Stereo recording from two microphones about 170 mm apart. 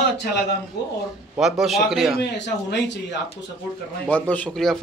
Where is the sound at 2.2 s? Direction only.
85° left.